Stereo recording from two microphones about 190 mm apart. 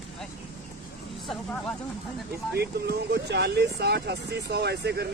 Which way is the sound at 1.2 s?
Centre (ahead or behind).